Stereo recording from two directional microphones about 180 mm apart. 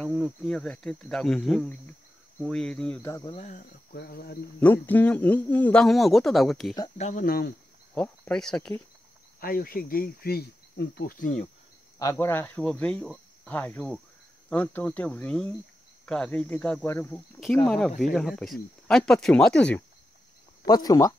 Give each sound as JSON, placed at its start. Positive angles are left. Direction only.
{"t": 0.0, "sound": "speech", "side_deg": 0}
{"t": 3.3, "sound": "speech", "side_deg": 40}
{"t": 3.9, "sound": "speech", "side_deg": 60}
{"t": 4.6, "sound": "speech", "side_deg": 10}
{"t": 7.0, "sound": "speech", "side_deg": 45}
{"t": 7.9, "sound": "speech", "side_deg": 5}
{"t": 9.4, "sound": "speech", "side_deg": 55}
{"t": 12.0, "sound": "speech", "side_deg": 15}
{"t": 16.9, "sound": "speech", "side_deg": 15}
{"t": 17.6, "sound": "speech", "side_deg": 0}
{"t": 20.6, "sound": "speech", "side_deg": 20}